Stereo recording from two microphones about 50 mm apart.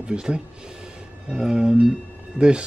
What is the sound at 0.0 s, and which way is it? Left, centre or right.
Speech, centre.